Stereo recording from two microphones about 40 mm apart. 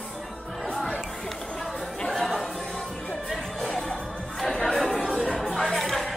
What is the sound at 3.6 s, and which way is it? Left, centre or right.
Music, centre.